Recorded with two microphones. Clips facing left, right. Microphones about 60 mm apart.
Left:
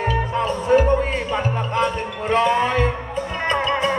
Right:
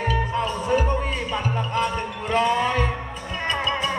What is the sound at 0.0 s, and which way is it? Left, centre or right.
Music, left.